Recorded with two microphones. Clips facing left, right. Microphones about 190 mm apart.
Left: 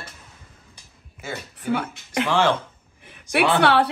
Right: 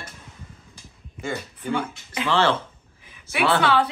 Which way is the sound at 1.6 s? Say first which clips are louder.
Left 5 dB; 65° left (ahead or behind).